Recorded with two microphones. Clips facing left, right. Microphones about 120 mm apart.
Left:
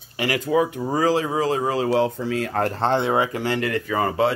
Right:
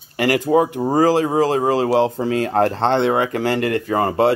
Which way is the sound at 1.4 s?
60° right (ahead or behind).